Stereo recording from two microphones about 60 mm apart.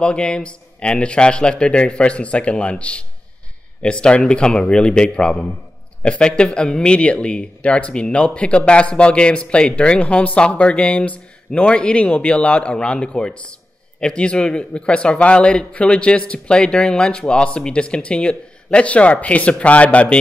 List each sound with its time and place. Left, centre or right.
0.0 s a man's voice: centre